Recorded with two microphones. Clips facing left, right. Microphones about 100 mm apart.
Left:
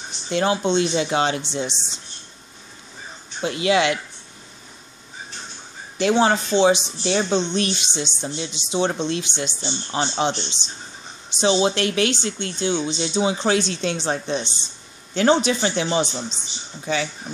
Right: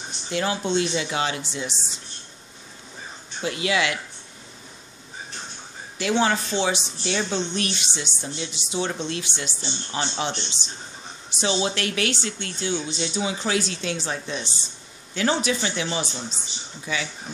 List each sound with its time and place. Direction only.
0.3 s speech: 25° left (ahead or behind)
3.4 s speech: 25° left (ahead or behind)
6.2 s speech: 20° left (ahead or behind)
7.0 s a woman's voice: 35° left (ahead or behind)
7.2 s speech: 20° left (ahead or behind)